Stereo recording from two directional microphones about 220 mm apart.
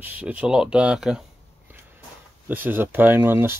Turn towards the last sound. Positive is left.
turn(degrees=-10)  # may be behind; listen again after turning